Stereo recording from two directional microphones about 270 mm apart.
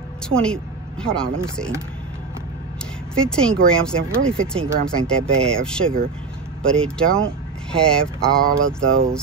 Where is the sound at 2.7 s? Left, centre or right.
Centre.